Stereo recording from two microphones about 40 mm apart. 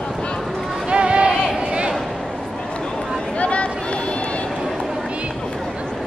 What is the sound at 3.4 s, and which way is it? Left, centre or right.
Chatter, left.